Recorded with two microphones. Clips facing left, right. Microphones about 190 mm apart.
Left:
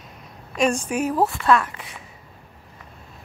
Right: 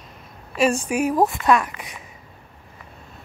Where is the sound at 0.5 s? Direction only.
5° right (ahead or behind).